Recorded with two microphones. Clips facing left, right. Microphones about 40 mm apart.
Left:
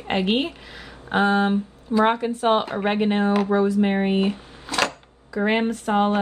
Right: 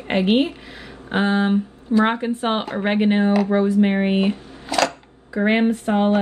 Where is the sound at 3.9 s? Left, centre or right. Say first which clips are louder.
Right 2 dB; right.